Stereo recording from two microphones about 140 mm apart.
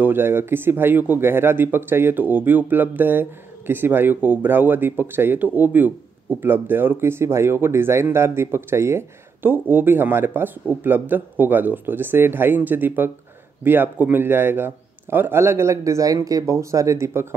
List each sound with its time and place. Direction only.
0.0 s speech: 15° right (ahead or behind)